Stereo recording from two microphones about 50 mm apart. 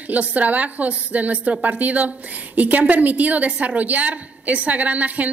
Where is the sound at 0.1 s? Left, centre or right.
Right.